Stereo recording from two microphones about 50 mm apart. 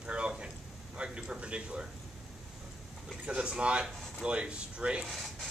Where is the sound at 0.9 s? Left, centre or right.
Right.